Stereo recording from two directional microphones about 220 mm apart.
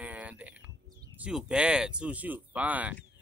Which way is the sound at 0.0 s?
5° right (ahead or behind).